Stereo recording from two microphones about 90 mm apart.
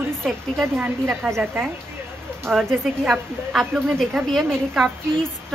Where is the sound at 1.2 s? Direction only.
Centre (ahead or behind).